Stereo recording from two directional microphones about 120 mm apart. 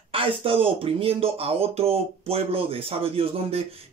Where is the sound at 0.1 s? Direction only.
50° right (ahead or behind).